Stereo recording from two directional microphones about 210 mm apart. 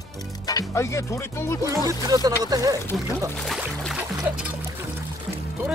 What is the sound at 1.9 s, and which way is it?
Speech, 15° right (ahead or behind).